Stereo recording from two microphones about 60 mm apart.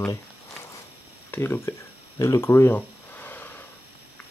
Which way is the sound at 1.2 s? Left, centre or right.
Left.